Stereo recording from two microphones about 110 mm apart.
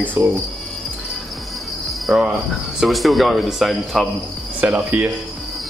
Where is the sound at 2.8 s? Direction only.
Centre (ahead or behind).